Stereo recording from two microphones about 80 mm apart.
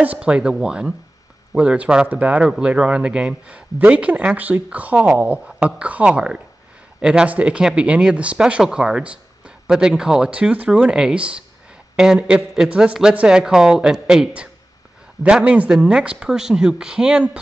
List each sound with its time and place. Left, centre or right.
0.0 s speech: centre